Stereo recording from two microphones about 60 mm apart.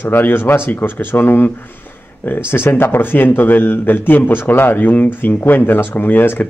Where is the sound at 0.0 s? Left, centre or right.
Left.